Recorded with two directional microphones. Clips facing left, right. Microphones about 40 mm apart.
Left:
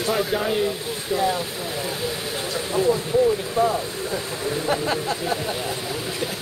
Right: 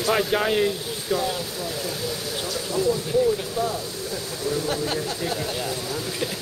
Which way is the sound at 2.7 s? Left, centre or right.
Left.